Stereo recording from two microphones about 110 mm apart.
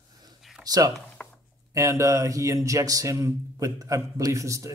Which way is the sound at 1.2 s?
10° left (ahead or behind).